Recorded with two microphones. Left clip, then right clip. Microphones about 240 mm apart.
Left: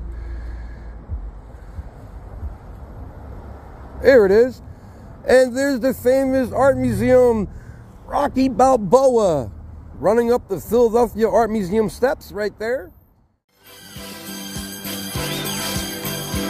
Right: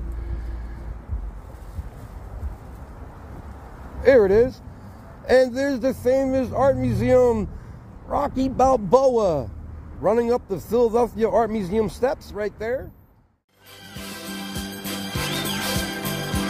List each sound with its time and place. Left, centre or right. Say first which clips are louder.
4.0 s a man's voice: left 3 dB; centre
8.1 s a man's voice: left 4 dB; left
13.9 s music: even; centre